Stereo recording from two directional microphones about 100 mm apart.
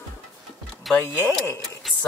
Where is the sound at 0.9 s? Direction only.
30° left (ahead or behind).